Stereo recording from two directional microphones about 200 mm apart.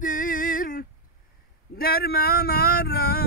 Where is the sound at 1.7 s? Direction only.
50° left (ahead or behind).